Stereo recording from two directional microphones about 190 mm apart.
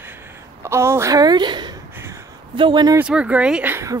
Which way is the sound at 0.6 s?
15° right (ahead or behind).